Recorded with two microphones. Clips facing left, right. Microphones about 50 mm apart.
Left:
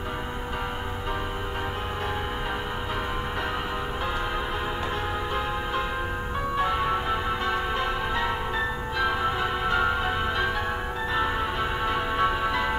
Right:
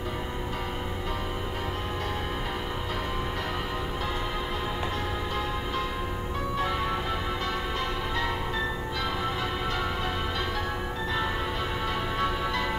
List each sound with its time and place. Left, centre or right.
6.5 s music: centre
11.8 s music: centre